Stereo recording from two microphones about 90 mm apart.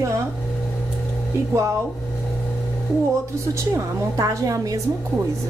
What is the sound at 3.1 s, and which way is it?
A woman's voice, 35° right (ahead or behind).